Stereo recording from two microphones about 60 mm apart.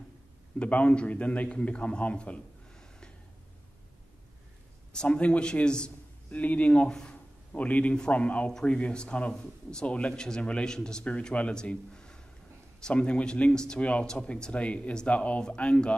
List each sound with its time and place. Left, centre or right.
0.6 s a man's voice: left
4.9 s speech: left
7.5 s speech: left